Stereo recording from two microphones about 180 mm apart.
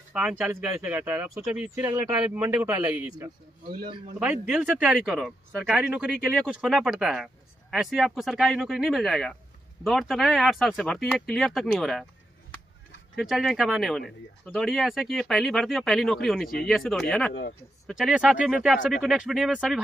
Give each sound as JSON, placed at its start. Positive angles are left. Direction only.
{"t": 0.1, "sound": "speech", "side_deg": -10}
{"t": 13.1, "sound": "speech", "side_deg": 0}
{"t": 17.3, "sound": "speech", "side_deg": 80}
{"t": 17.8, "sound": "speech", "side_deg": -5}